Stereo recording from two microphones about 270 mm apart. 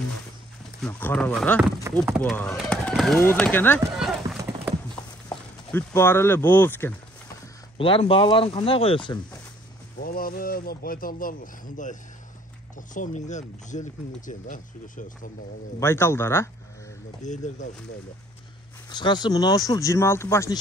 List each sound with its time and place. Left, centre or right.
0.7 s speech: centre
2.0 s speech: centre
2.3 s speech: centre
4.2 s clip-clop: centre
5.3 s speech: centre
7.7 s speech: centre
9.9 s speech: left
15.8 s speech: centre
17.2 s speech: left
18.9 s speech: centre